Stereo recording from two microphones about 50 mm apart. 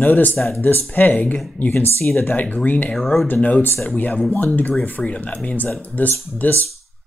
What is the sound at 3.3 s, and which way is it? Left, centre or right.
Speech, left.